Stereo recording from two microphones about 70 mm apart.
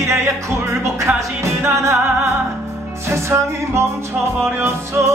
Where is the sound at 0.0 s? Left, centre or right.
Right.